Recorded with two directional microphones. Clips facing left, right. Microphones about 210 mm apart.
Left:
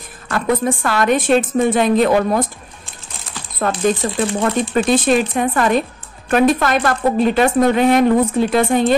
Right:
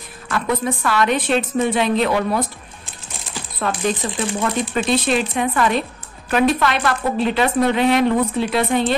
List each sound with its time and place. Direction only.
0.3 s speech: 45° left (ahead or behind)
3.5 s speech: 45° left (ahead or behind)